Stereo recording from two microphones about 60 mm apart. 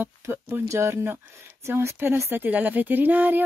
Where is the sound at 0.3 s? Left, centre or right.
Right.